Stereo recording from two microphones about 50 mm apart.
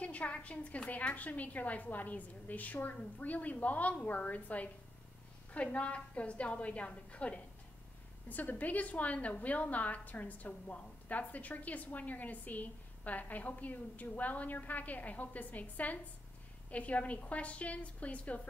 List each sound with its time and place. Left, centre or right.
0.0 s a woman's voice: left